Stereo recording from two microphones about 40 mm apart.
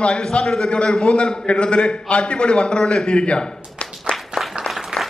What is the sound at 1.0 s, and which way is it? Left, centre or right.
A man's voice, left.